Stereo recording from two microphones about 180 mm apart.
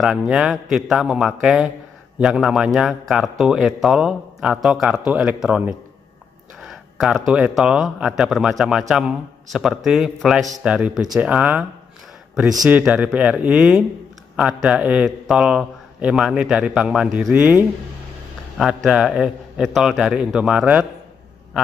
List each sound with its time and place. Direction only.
0.0 s a man's voice: centre (ahead or behind)
12.6 s a man's voice: 5° right (ahead or behind)